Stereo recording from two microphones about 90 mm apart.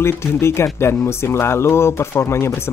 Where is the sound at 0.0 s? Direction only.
30° left (ahead or behind).